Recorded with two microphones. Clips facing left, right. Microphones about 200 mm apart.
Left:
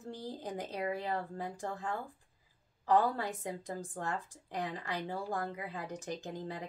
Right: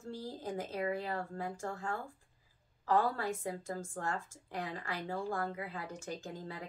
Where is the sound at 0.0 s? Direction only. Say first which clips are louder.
Even; 15° left (ahead or behind).